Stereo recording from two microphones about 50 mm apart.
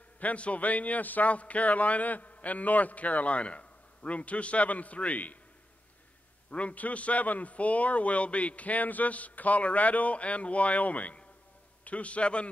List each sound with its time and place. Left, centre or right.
0.2 s a man's voice: left
6.5 s a man's voice: left